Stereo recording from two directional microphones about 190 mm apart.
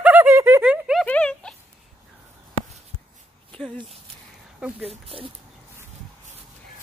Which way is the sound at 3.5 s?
5° left (ahead or behind).